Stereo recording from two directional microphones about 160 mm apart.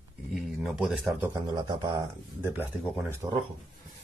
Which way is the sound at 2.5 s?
10° right (ahead or behind).